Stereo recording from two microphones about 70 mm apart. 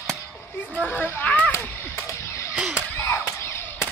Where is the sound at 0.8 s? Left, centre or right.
Left.